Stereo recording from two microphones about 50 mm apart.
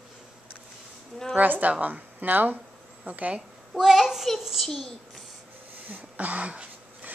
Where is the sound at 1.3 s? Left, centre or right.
Right.